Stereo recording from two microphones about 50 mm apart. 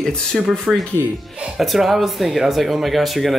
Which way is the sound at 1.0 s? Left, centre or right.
Right.